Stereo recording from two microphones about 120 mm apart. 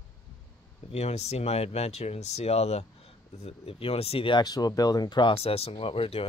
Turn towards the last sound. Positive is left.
turn(degrees=50)  # may be behind; listen again after turning